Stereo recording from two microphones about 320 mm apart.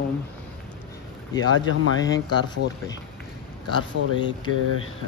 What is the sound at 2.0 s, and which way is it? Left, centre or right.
Speech, centre.